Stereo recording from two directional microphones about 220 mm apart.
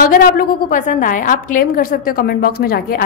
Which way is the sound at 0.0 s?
45° left (ahead or behind).